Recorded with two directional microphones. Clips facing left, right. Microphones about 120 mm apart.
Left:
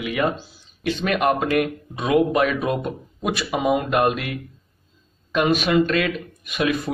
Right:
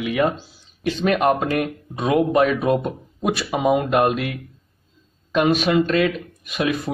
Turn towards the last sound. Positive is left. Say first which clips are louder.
# even
turn(degrees=-30)  # may be behind; listen again after turning